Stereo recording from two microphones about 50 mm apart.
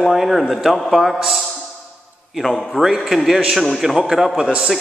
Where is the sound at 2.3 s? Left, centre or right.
Centre.